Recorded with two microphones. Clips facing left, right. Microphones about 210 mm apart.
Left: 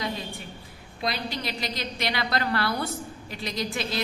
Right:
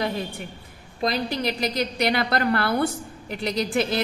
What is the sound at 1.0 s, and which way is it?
A woman's voice, 45° right (ahead or behind).